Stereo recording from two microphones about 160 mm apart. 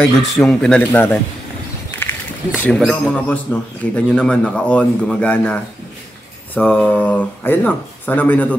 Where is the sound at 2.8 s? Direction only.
Centre (ahead or behind).